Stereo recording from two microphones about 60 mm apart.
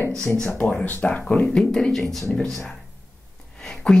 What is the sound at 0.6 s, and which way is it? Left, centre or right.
Speech, centre.